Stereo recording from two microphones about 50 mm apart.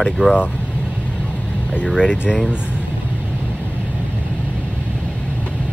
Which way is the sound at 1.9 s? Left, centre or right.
Centre.